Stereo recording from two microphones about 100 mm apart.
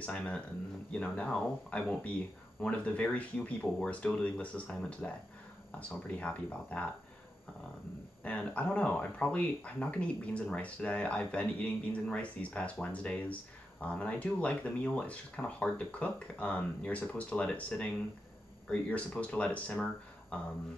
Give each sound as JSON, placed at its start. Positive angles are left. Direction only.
{"t": 0.0, "sound": "speech", "side_deg": 10}
{"t": 8.2, "sound": "speech", "side_deg": 15}